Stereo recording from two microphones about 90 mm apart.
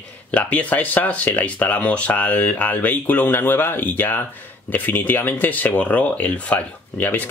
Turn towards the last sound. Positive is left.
turn(degrees=20)  # may be behind; listen again after turning